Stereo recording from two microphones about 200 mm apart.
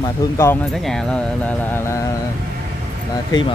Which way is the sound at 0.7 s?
Centre (ahead or behind).